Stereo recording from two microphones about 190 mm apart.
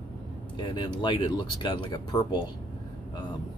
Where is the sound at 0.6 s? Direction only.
25° left (ahead or behind).